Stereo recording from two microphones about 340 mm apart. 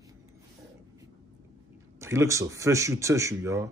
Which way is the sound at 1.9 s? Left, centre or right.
Centre.